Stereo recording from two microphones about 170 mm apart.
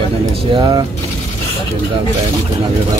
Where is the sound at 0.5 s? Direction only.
25° right (ahead or behind).